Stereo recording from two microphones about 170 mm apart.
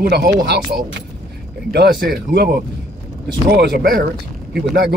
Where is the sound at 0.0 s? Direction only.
70° right (ahead or behind).